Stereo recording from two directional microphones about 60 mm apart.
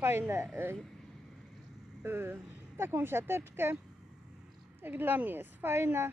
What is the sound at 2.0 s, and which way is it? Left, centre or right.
Speech, right.